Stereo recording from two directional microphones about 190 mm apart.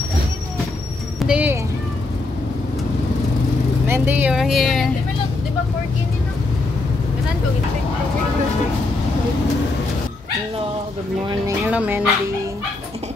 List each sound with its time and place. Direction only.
1.2 s clip-clop: 5° right (ahead or behind)
3.8 s speech: 10° right (ahead or behind)
11.6 s speech: 10° right (ahead or behind)